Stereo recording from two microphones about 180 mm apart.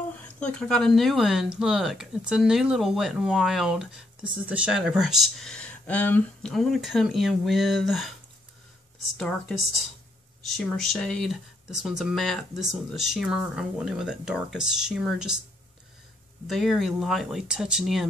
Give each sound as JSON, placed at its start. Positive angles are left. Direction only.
{"t": 0.4, "sound": "speech", "side_deg": 5}
{"t": 9.1, "sound": "speech", "side_deg": 0}
{"t": 16.4, "sound": "speech", "side_deg": 0}